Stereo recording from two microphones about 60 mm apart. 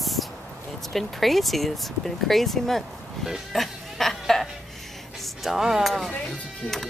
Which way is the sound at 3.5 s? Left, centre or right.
Centre.